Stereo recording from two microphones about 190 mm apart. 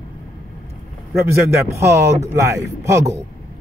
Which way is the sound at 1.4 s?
15° right (ahead or behind).